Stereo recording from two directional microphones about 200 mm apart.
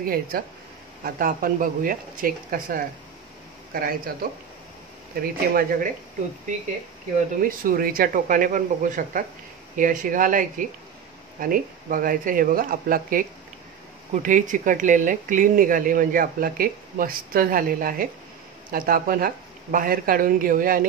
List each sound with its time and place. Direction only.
0.0 s speech: 45° right (ahead or behind)
7.4 s speech: 45° right (ahead or behind)